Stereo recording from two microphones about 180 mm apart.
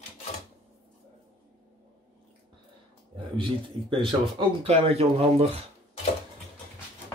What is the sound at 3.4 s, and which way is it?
Speech, 30° right (ahead or behind).